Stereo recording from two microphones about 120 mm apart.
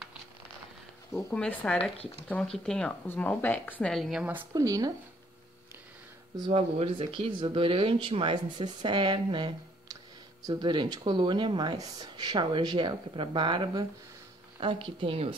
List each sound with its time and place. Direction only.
1.3 s speech: 10° left (ahead or behind)
1.8 s speech: 55° left (ahead or behind)
2.2 s speech: 10° left (ahead or behind)
3.9 s speech: centre (ahead or behind)
4.6 s speech: 30° right (ahead or behind)
6.5 s speech: 50° right (ahead or behind)